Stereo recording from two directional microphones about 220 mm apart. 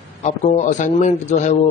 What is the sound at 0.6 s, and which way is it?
A man's voice, 35° left (ahead or behind).